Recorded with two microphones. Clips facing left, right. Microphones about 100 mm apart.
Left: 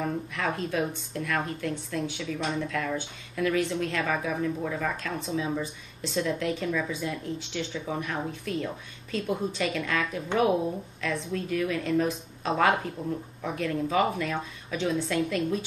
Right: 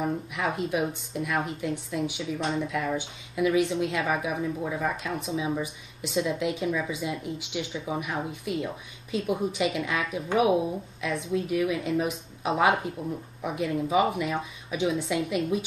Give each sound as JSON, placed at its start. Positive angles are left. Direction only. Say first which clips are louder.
{"t": 0.0, "sound": "speech", "louder": "right 1 dB", "side_deg": -15}